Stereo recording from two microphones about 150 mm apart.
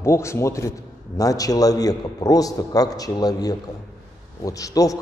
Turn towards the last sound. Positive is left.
turn(degrees=20)  # may be behind; listen again after turning